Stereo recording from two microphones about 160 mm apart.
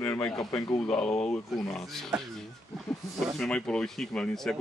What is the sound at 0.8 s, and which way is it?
Speech, 5° left (ahead or behind).